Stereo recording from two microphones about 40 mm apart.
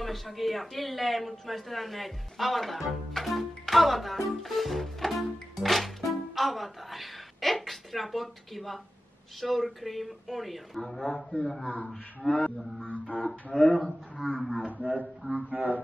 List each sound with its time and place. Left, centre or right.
0.0 s a man's voice: centre
11.1 s a man's voice: centre
11.6 s a sound: left
13.3 s speech: centre
14.1 s speech: centre
15.5 s music: right